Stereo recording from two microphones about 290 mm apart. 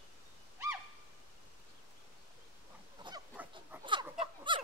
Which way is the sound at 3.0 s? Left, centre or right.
Centre.